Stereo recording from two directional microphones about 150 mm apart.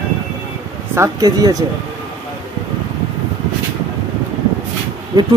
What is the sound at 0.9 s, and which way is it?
Speech, 20° right (ahead or behind).